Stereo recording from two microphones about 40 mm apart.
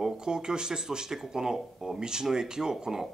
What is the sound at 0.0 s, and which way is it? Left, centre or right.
Speech, centre.